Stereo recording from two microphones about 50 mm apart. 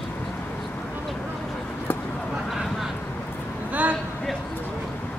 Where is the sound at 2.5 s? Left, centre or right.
Centre.